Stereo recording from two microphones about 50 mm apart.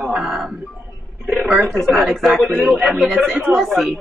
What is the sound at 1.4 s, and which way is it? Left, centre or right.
Speech, right.